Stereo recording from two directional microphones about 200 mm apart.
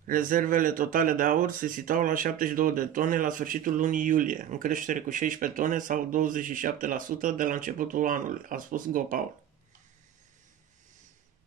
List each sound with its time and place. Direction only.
0.0 s speech: 40° right (ahead or behind)